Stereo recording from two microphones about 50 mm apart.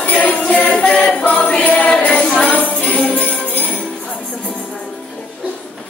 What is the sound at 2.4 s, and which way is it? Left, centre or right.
Jingle bell, left.